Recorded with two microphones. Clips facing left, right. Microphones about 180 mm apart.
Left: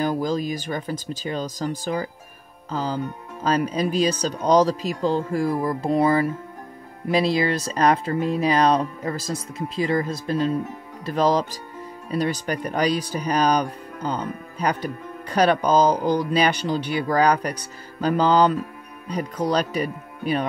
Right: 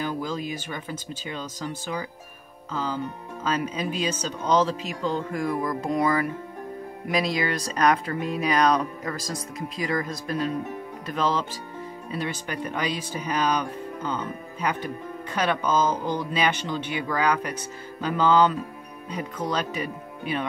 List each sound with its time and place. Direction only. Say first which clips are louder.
0.0 s speech: left 6 dB; 40° left (ahead or behind)